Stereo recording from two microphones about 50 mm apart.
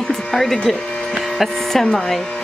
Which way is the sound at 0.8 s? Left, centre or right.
Centre.